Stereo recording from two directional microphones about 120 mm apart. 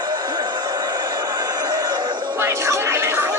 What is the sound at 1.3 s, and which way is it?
Neigh, 35° right (ahead or behind).